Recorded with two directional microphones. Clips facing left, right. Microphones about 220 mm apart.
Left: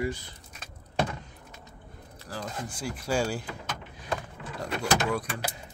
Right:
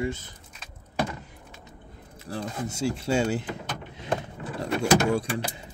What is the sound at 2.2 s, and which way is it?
Speech, 25° right (ahead or behind).